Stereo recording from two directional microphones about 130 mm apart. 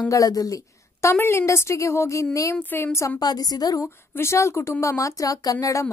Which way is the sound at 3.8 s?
20° left (ahead or behind).